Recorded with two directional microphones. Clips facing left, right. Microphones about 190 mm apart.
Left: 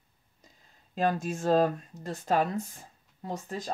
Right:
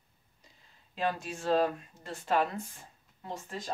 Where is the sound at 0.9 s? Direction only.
45° left (ahead or behind).